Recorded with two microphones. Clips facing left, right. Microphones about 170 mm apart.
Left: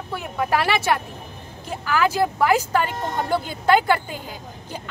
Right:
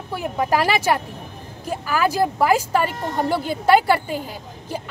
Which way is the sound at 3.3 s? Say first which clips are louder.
Right 2 dB; 5° right (ahead or behind).